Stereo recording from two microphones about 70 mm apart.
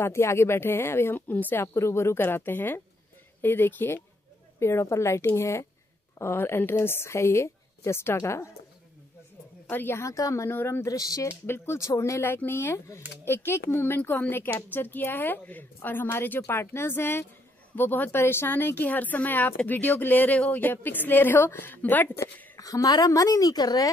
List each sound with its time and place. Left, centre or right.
0.0 s speech: left
1.7 s speech: left
4.6 s speech: left
9.7 s speech: left
10.0 s speech: left
10.5 s speech: left
10.9 s a woman's voice: left
11.2 s speech: left
22.6 s a woman's voice: left